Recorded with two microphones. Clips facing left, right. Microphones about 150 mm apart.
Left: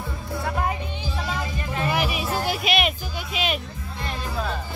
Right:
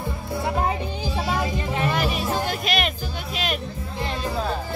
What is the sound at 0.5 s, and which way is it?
Music, 25° right (ahead or behind).